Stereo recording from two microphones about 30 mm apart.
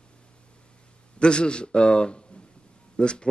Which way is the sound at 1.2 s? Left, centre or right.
Left.